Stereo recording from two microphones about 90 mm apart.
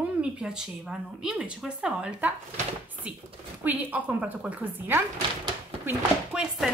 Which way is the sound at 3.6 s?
20° right (ahead or behind).